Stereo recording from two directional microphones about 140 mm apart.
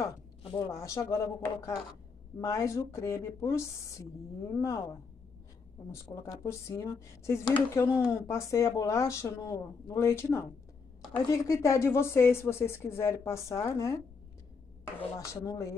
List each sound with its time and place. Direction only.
0.4 s a sound: 40° left (ahead or behind)
0.7 s speech: 20° left (ahead or behind)
15.1 s speech: 25° left (ahead or behind)